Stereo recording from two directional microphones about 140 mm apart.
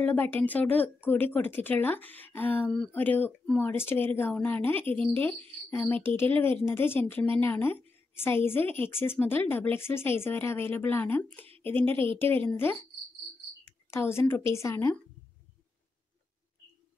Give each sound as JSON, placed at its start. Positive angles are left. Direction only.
{"t": 0.0, "sound": "speech", "side_deg": 15}
{"t": 13.8, "sound": "a woman's voice", "side_deg": 20}